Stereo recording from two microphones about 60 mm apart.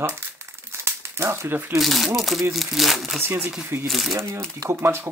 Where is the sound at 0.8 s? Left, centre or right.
Right.